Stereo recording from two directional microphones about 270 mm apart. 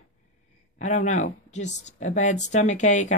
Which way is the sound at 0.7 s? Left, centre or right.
Left.